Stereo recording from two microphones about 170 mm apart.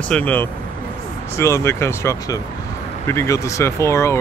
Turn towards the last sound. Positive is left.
turn(degrees=15)  # may be behind; listen again after turning